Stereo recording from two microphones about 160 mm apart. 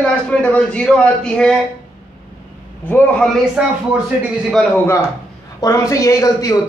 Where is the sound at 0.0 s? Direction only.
10° left (ahead or behind).